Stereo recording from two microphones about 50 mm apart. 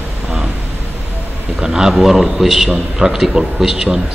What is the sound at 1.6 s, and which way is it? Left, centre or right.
A man's voice, centre.